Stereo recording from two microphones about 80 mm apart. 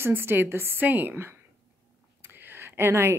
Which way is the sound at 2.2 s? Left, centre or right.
Right.